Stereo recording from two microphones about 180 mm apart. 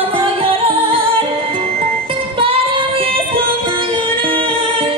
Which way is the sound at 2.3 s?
30° right (ahead or behind).